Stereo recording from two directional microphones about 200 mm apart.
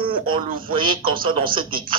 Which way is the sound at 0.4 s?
45° right (ahead or behind).